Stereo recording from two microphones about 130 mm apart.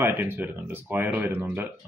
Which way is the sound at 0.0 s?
15° right (ahead or behind).